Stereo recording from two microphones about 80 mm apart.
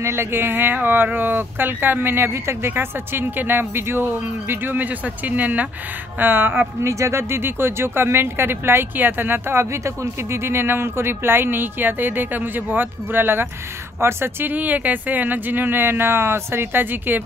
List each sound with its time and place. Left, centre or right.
0.0 s speech: right
6.9 s speech: right